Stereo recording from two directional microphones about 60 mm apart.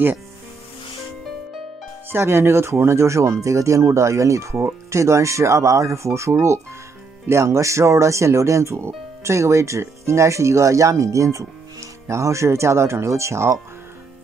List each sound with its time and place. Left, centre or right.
2.2 s speech: right